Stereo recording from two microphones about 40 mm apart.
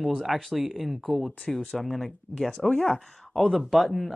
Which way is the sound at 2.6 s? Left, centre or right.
Left.